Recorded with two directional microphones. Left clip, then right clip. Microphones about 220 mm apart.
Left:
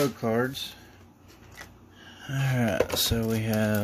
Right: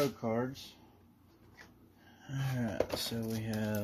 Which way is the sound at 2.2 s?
25° left (ahead or behind).